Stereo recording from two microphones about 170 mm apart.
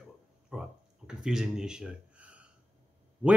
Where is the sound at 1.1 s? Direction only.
Centre (ahead or behind).